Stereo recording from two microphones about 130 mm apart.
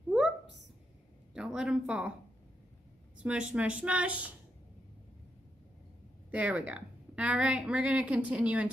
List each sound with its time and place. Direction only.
1.3 s speech: 5° right (ahead or behind)
3.2 s speech: 5° right (ahead or behind)
6.3 s speech: 10° right (ahead or behind)